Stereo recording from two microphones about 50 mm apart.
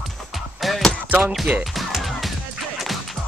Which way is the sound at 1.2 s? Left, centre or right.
Centre.